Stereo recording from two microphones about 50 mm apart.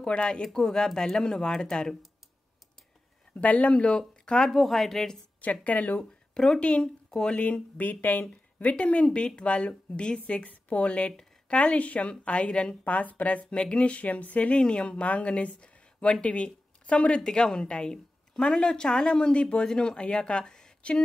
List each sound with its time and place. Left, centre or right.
0.0 s a woman's voice: centre
3.3 s speech: left
4.5 s speech: centre
5.4 s speech: left
5.9 s speech: centre
7.3 s speech: left
17.2 s a woman's voice: centre